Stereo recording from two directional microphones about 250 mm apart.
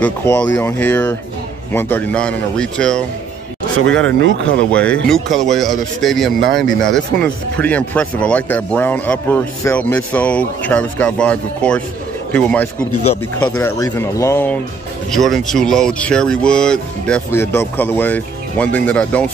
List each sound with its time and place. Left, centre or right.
0.0 s speech: centre
4.0 s speech: right
4.7 s speech: centre